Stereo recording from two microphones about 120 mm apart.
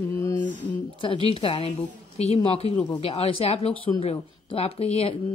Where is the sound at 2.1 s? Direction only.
60° left (ahead or behind).